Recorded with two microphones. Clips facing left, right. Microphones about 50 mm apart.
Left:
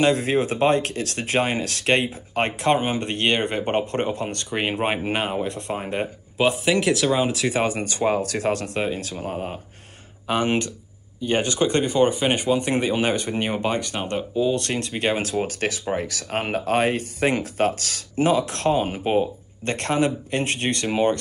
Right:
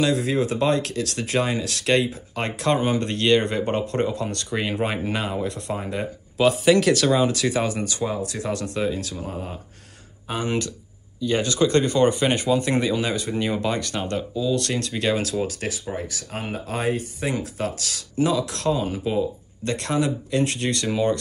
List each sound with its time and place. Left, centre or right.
0.0 s speech: left
6.5 s speech: centre
7.5 s speech: left
8.1 s speech: left
10.2 s speech: left
11.1 s speech: left
11.8 s speech: centre; by 13.7 s left
13.7 s speech: left
14.3 s speech: left
14.6 s speech: left
15.9 s speech: left